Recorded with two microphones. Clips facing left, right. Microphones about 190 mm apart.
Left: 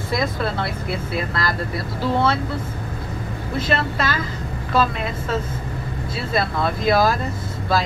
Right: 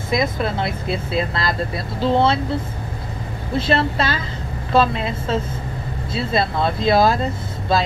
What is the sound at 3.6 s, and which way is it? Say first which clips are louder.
Speech: right 3 dB; 30° right (ahead or behind).